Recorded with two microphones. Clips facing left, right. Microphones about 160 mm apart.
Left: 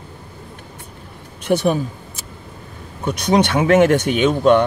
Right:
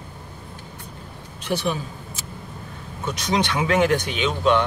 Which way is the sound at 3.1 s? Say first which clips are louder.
Left 7 dB; 55° left (ahead or behind).